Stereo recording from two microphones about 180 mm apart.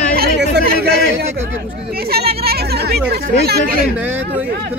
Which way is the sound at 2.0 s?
60° right (ahead or behind).